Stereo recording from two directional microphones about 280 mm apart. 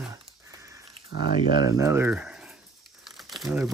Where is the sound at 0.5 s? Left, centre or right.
Centre.